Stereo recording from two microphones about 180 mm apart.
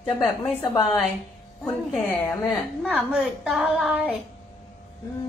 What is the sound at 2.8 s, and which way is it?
A woman's voice, centre (ahead or behind).